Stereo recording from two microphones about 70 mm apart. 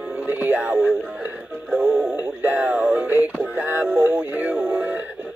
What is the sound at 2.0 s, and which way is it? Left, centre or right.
Music, right.